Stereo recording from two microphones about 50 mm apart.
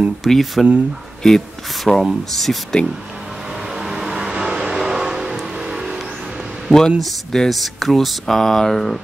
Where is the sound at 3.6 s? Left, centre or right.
Centre.